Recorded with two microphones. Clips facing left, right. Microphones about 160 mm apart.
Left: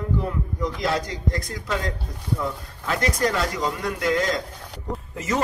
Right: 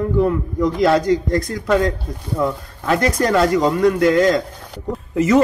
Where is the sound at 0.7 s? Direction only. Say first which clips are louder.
Right 13 dB; 60° right (ahead or behind).